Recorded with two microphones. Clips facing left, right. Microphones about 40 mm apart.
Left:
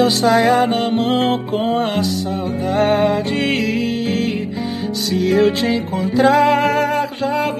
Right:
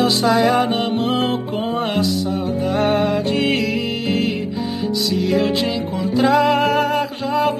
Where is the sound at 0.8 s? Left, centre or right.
Left.